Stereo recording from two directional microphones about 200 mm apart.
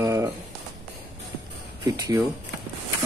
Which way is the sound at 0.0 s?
15° right (ahead or behind).